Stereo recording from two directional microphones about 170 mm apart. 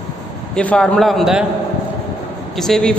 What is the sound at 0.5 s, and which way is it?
Speech, 5° left (ahead or behind).